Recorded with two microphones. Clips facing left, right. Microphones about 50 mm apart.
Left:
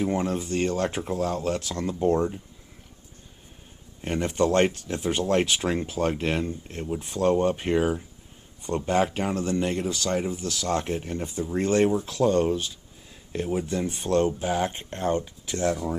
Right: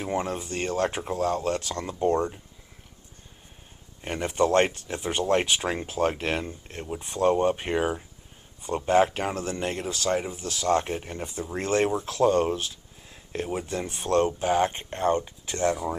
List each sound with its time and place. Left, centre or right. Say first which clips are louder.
0.0 s speech: left 3 dB; centre
4.0 s speech: left 1 dB; centre
13.9 s speech: right 1 dB; right
14.6 s speech: right 3 dB; right
15.6 s speech: right 1 dB; centre